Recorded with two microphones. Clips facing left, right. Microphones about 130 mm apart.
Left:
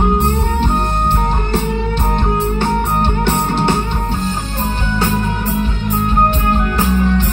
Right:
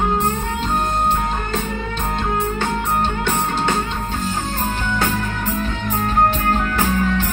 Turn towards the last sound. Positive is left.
turn(degrees=10)  # may be behind; listen again after turning